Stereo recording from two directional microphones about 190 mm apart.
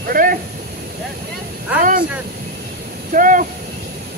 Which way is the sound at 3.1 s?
45° right (ahead or behind).